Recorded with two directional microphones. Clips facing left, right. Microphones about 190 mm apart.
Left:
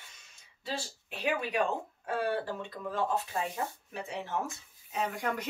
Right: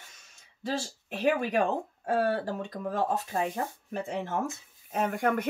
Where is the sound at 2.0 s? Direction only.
40° right (ahead or behind).